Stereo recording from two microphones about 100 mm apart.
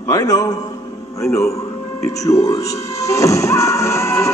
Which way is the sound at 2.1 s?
35° left (ahead or behind).